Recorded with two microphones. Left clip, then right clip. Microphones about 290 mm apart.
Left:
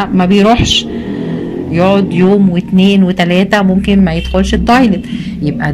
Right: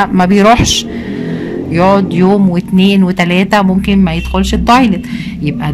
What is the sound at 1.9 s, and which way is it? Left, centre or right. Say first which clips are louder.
Speech: even; centre.